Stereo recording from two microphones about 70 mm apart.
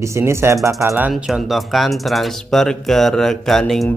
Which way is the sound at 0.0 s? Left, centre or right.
Right.